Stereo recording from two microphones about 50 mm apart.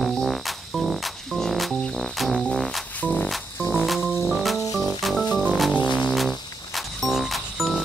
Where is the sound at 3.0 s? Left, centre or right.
Left.